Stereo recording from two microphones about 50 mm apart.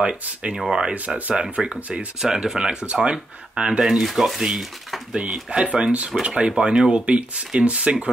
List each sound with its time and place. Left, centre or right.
0.0 s speech: centre
0.9 s speech: right
1.3 s speech: centre
3.8 s speech: centre
5.1 s speech: centre